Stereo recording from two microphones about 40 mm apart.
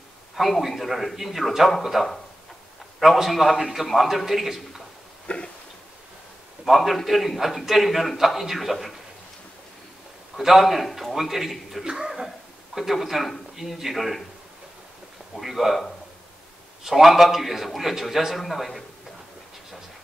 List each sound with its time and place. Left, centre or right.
0.4 s a man's voice: centre
5.2 s a sound: left
6.6 s a man's voice: centre
10.3 s a man's voice: centre
11.8 s speech: centre
12.7 s a man's voice: centre
15.3 s a man's voice: centre
16.8 s a man's voice: centre